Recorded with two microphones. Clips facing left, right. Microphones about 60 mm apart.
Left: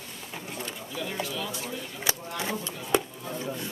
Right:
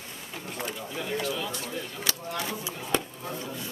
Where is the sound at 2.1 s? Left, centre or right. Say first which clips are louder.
Left 2 dB; centre.